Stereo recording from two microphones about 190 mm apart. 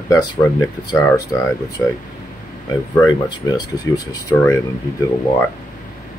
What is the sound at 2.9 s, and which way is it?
Speech, 20° left (ahead or behind).